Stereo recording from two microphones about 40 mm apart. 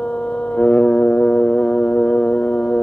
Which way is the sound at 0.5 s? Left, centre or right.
Left.